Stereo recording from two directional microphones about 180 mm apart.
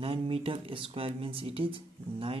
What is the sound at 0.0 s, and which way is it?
Speech, 30° right (ahead or behind).